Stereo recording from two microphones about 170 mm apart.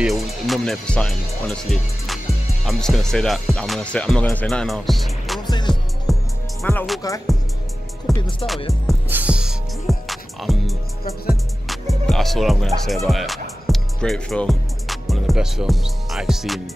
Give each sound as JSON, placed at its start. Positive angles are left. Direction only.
{"t": 0.0, "sound": "speech", "side_deg": 0}
{"t": 5.5, "sound": "music", "side_deg": 25}
{"t": 6.1, "sound": "music", "side_deg": 0}
{"t": 6.6, "sound": "speech", "side_deg": 10}
{"t": 8.1, "sound": "music", "side_deg": 0}